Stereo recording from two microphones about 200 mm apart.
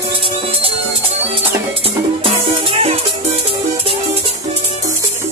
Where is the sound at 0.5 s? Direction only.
30° right (ahead or behind).